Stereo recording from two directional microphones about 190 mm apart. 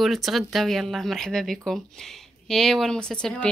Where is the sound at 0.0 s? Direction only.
Centre (ahead or behind).